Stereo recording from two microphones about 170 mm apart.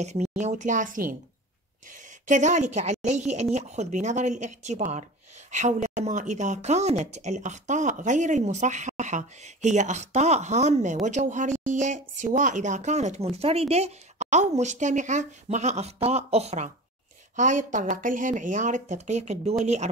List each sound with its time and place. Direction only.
0.0 s speech: 40° right (ahead or behind)
2.2 s speech: 45° right (ahead or behind)